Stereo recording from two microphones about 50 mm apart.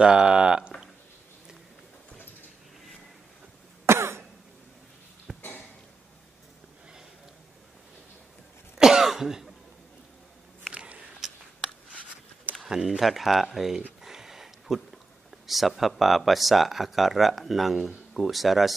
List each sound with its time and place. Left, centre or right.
0.0 s speech: centre
3.8 s cough: right
5.3 s sniff: centre
8.7 s cough: centre
10.7 s a sound: right
11.2 s a sound: centre
12.6 s speech: centre
13.0 s speech: centre
14.0 s a sound: centre
15.4 s speech: centre